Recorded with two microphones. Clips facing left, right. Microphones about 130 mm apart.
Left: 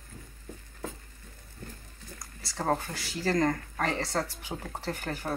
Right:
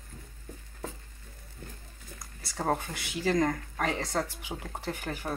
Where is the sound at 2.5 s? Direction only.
10° right (ahead or behind).